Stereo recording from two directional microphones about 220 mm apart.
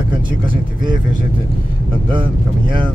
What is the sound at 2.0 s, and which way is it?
Speech, 20° right (ahead or behind).